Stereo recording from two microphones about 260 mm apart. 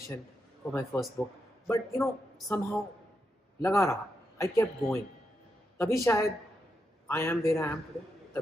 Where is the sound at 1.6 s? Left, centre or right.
Centre.